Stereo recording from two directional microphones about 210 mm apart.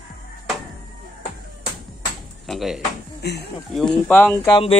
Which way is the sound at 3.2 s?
50° left (ahead or behind).